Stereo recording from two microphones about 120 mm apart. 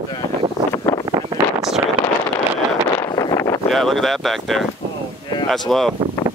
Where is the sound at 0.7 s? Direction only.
25° left (ahead or behind).